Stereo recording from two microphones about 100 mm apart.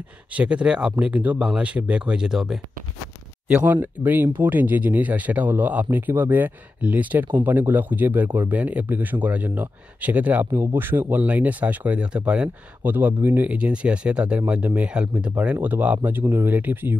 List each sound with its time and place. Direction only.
0.3 s speech: 10° right (ahead or behind)
3.4 s speech: 15° right (ahead or behind)